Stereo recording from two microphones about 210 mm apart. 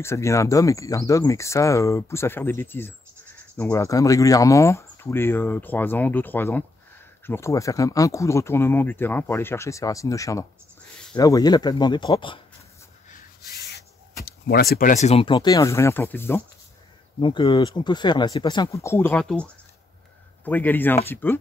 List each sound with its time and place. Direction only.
0.0 s speech: 15° left (ahead or behind)
13.1 s rub: 50° left (ahead or behind)
14.2 s speech: 45° left (ahead or behind); by 15.3 s 30° left (ahead or behind)
15.3 s speech: 15° left (ahead or behind)
17.2 s speech: 25° left (ahead or behind); by 19.4 s 5° left (ahead or behind)
20.4 s speech: 10° left (ahead or behind)